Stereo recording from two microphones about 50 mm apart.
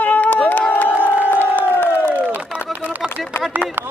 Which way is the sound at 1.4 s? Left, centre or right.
Left.